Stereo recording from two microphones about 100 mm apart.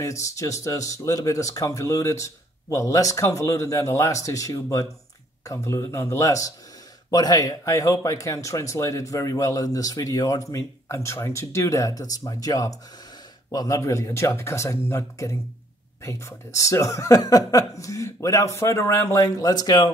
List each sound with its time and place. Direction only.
0.0 s a man's voice: 30° left (ahead or behind)